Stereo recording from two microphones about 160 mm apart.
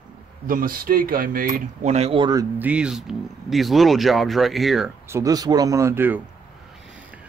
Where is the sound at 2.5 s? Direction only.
10° right (ahead or behind).